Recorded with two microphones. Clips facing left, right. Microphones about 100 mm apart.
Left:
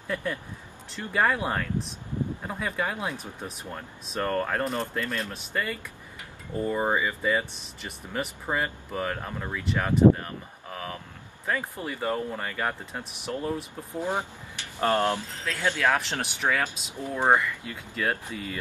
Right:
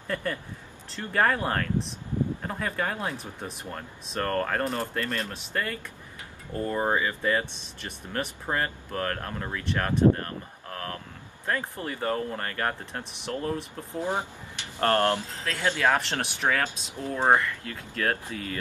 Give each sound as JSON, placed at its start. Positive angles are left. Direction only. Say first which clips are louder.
{"t": 0.1, "sound": "speech", "louder": "even", "side_deg": 5}
{"t": 15.6, "sound": "speech", "louder": "right 1 dB", "side_deg": -15}
{"t": 16.0, "sound": "speech", "louder": "right 1 dB", "side_deg": 0}